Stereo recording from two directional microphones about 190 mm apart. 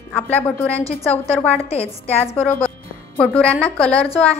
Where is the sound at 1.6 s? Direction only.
35° left (ahead or behind).